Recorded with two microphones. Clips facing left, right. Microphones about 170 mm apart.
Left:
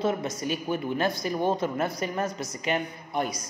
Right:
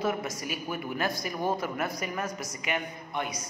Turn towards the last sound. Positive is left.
turn(degrees=35)  # may be behind; listen again after turning